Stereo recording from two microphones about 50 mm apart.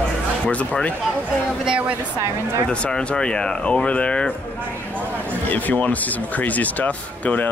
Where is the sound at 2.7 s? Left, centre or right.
Left.